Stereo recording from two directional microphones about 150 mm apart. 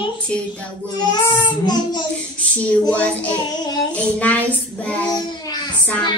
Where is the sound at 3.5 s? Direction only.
25° left (ahead or behind).